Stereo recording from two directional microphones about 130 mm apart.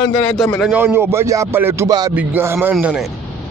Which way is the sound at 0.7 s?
15° right (ahead or behind).